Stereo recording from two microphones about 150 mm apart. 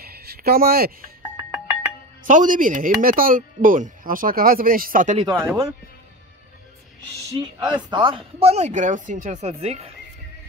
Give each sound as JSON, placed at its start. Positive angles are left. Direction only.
{"t": 0.0, "sound": "a sound", "side_deg": -90}
{"t": 2.2, "sound": "speech", "side_deg": -60}
{"t": 5.1, "sound": "speech", "side_deg": -30}
{"t": 7.3, "sound": "speech", "side_deg": -30}